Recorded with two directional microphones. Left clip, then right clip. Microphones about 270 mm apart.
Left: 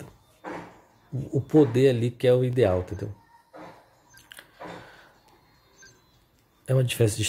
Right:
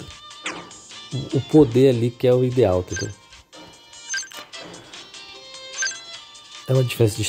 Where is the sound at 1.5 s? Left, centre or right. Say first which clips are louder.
Right 5 dB; centre.